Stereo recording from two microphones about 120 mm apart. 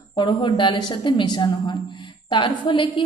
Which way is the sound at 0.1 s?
45° left (ahead or behind).